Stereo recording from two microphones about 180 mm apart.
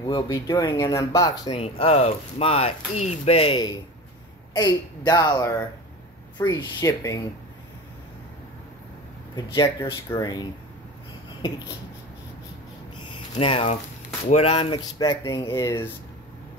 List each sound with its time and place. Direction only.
0.0 s speech: 20° left (ahead or behind)
1.5 s speech: 35° left (ahead or behind); by 7.2 s 20° left (ahead or behind)
9.3 s speech: 20° left (ahead or behind)
13.0 s a sound: 30° left (ahead or behind)
14.3 s speech: 30° left (ahead or behind)